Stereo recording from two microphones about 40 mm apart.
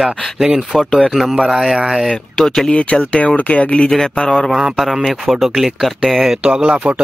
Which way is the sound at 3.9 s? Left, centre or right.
Centre.